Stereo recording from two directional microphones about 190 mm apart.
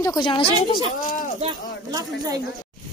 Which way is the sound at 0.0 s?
20° left (ahead or behind).